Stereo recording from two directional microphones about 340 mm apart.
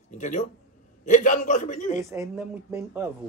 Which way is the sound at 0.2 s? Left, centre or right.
Left.